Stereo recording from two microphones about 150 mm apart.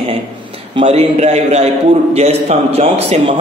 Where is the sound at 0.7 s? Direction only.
40° right (ahead or behind).